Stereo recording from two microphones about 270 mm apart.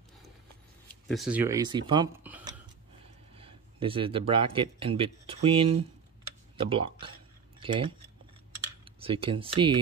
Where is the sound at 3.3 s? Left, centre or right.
Centre.